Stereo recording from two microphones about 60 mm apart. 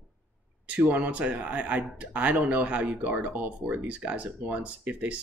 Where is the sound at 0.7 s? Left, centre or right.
Right.